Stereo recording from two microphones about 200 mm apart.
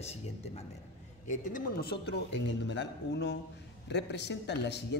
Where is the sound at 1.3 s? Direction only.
40° left (ahead or behind).